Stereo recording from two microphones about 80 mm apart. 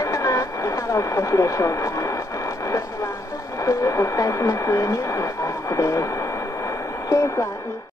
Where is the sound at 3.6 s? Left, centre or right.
Left.